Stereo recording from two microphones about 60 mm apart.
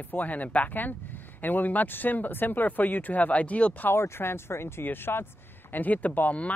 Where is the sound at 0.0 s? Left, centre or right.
Left.